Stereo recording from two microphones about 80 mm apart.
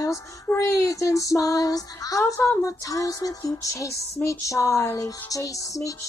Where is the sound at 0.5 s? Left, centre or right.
Left.